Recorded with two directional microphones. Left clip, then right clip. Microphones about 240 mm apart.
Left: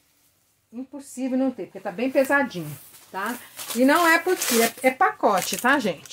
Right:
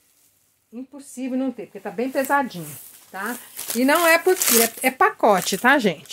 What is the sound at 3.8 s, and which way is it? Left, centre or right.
Speech, right.